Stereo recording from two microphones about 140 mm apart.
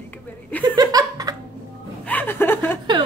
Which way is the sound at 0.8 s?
25° right (ahead or behind).